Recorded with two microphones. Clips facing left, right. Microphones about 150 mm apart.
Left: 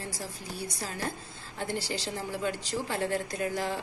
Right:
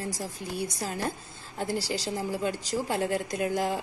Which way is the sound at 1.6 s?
40° right (ahead or behind).